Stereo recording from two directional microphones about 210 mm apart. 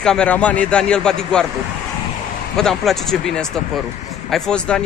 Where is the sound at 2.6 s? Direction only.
Centre (ahead or behind).